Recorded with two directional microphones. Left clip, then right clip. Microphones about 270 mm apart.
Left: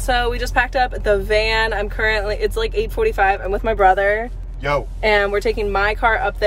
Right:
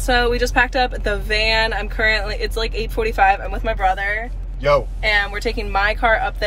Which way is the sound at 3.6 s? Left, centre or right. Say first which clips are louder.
Left 5 dB; left.